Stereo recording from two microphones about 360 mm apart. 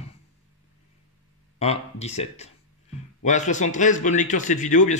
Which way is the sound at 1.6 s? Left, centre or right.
Centre.